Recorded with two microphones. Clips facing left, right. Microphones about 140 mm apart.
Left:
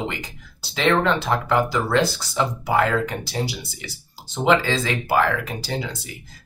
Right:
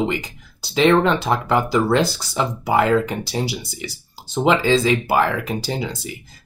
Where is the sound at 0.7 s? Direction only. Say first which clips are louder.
Right 4 dB; 20° right (ahead or behind).